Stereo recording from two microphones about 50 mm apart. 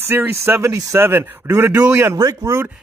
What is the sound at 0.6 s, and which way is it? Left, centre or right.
Speech, right.